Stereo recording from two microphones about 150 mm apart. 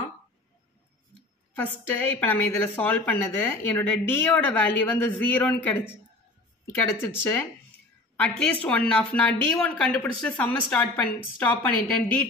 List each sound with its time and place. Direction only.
1.5 s a woman's voice: 10° left (ahead or behind)
8.2 s a woman's voice: 10° left (ahead or behind)